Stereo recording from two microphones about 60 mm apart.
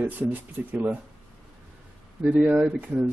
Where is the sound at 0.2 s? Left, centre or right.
Right.